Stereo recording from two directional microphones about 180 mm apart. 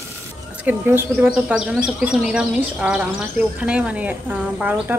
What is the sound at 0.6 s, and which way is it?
A woman's voice, 10° right (ahead or behind).